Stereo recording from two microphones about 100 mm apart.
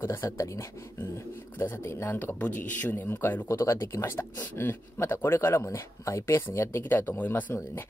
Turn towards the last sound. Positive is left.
turn(degrees=30)  # may be behind; listen again after turning